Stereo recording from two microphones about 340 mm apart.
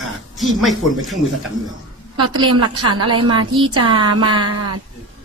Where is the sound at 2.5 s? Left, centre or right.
Right.